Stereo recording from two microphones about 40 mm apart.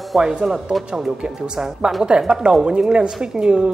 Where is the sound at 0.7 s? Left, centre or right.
Centre.